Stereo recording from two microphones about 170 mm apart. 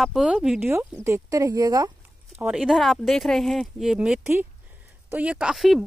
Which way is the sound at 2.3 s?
5° right (ahead or behind).